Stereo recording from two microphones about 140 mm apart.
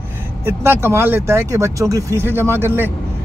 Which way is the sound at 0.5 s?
15° right (ahead or behind).